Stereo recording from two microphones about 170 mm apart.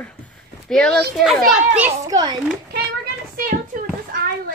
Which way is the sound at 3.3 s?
55° right (ahead or behind).